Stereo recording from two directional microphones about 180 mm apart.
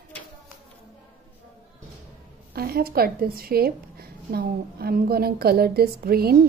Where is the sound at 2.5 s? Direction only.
55° right (ahead or behind).